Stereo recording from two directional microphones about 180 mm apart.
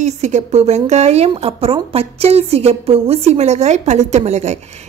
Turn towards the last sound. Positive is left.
turn(degrees=-40)  # may be behind; listen again after turning